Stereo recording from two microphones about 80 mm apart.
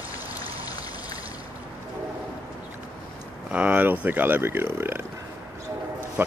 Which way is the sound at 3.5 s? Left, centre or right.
Centre.